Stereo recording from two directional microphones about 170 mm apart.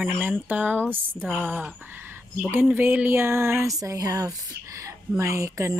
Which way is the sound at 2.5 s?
10° right (ahead or behind).